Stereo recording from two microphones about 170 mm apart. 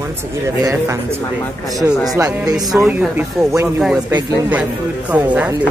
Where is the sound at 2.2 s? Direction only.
20° right (ahead or behind).